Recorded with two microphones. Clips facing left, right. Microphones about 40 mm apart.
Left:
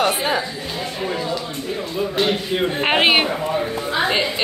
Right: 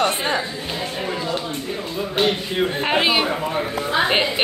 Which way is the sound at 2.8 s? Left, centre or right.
Left.